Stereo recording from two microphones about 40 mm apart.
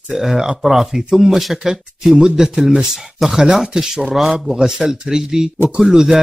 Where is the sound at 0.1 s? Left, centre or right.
Centre.